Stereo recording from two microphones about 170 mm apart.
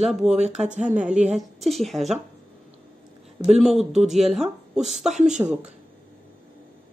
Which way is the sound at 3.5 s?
Centre (ahead or behind).